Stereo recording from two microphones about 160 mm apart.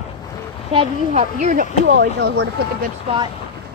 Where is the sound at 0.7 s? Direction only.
45° right (ahead or behind).